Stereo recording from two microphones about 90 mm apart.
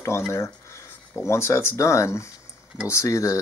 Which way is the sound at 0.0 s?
30° left (ahead or behind).